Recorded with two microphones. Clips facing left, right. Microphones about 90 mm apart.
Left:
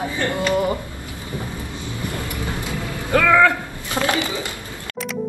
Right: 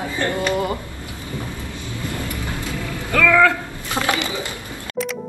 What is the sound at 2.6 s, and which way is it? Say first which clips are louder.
Vehicle: even; 20° left (ahead or behind).